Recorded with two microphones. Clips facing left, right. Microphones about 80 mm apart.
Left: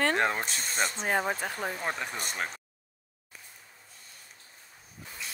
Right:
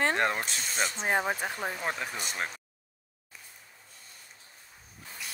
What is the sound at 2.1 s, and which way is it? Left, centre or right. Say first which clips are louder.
Speech: left 1 dB; left.